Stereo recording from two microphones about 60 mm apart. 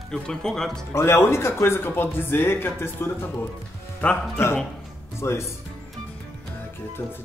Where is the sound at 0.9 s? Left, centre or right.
Left.